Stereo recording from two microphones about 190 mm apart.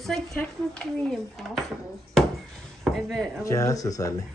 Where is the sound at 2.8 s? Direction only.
Centre (ahead or behind).